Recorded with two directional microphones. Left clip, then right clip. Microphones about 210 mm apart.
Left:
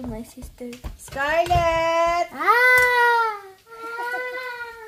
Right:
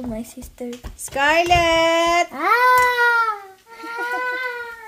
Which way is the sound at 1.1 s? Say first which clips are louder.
Right 4 dB; 55° right (ahead or behind).